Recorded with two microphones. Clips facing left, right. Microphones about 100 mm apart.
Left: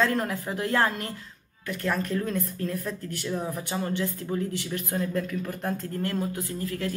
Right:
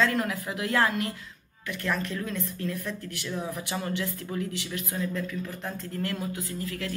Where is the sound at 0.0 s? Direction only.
40° left (ahead or behind).